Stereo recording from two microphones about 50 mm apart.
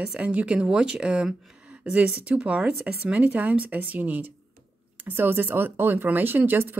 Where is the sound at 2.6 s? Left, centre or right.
Right.